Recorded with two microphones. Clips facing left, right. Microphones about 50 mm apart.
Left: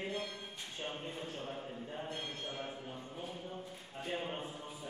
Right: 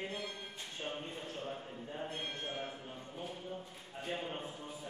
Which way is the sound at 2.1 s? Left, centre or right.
Right.